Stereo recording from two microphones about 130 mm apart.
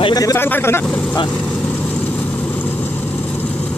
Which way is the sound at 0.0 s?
30° left (ahead or behind).